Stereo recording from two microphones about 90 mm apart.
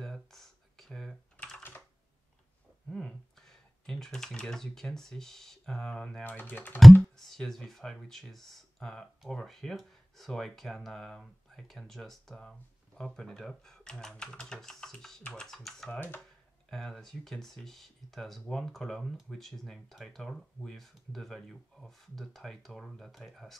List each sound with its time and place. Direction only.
0.0 s a sound: 5° left (ahead or behind)
1.4 s computer keyboard: 15° left (ahead or behind)
2.9 s computer keyboard: 5° left (ahead or behind)
6.2 s speech: 20° left (ahead or behind)
6.8 s speech: centre (ahead or behind)